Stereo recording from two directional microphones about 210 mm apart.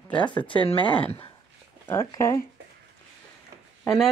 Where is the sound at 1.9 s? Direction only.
15° left (ahead or behind).